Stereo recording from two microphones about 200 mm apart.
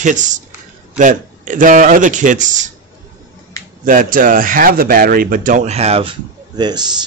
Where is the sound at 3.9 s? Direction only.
45° right (ahead or behind); by 6.8 s 20° right (ahead or behind).